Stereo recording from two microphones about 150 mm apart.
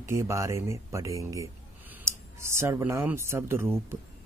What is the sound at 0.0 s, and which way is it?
Speech, 20° right (ahead or behind).